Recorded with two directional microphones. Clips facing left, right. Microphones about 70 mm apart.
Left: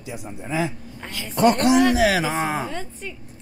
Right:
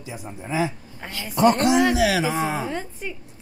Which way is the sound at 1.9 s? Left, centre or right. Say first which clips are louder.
Left 1 dB; left.